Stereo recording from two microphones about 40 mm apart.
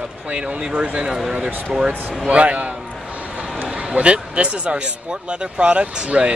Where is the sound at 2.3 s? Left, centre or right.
Right.